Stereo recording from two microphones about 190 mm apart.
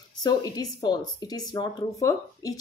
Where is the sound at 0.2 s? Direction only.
20° left (ahead or behind).